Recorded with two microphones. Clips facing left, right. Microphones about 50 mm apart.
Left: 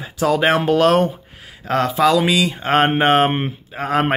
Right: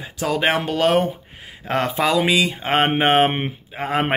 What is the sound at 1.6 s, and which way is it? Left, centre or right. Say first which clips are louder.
Speech: left 4 dB; right.